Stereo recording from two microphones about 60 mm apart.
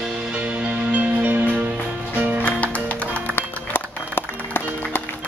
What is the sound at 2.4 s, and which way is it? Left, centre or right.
Music, left.